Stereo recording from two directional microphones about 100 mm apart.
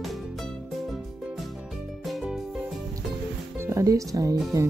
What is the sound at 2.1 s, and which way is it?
Music, centre (ahead or behind).